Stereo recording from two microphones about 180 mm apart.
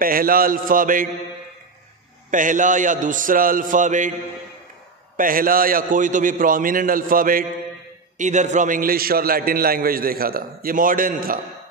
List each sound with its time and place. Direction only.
0.0 s a man's voice: 55° right (ahead or behind)
2.3 s a man's voice: 45° right (ahead or behind)
5.1 s a man's voice: 50° right (ahead or behind)